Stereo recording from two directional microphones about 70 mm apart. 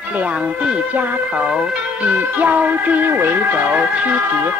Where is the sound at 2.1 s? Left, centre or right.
Right.